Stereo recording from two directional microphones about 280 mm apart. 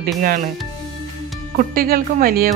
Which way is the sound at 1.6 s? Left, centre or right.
Right.